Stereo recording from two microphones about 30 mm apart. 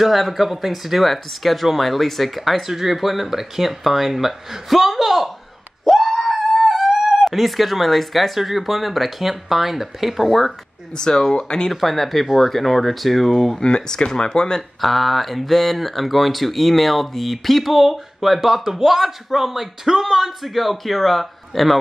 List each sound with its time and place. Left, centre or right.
0.0 s speech: centre
2.6 s speech: centre
5.9 s screaming: centre
6.6 s speech: centre
11.0 s speech: centre
11.7 s speech: centre
13.6 s speech: left
14.8 s speech: centre